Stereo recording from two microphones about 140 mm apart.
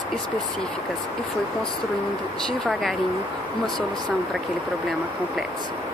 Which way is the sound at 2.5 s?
Centre (ahead or behind).